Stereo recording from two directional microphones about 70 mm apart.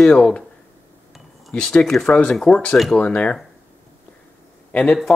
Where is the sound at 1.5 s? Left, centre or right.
Centre.